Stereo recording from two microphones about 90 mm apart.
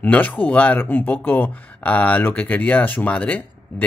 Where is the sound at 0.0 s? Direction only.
20° left (ahead or behind).